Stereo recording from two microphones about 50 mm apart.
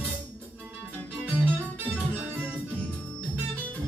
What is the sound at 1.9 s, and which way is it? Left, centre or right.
Music, right.